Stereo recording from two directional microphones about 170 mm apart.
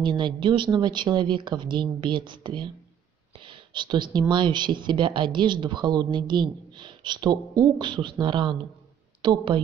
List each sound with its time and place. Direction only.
0.0 s speech: 30° right (ahead or behind)
3.3 s a sound: 30° right (ahead or behind)
4.3 s speech: 25° right (ahead or behind)